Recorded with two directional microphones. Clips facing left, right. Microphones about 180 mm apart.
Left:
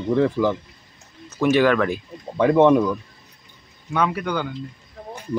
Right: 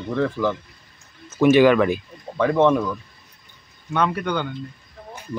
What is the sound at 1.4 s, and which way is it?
Speech, centre (ahead or behind).